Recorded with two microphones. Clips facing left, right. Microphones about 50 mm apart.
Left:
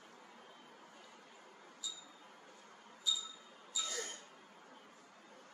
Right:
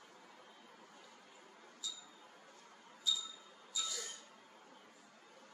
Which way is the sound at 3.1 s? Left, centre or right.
Centre.